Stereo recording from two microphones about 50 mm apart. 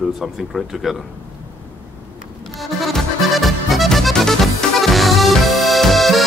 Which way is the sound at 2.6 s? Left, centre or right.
Centre.